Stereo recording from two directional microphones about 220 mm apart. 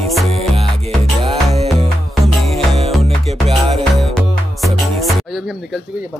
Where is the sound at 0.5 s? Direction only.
25° right (ahead or behind).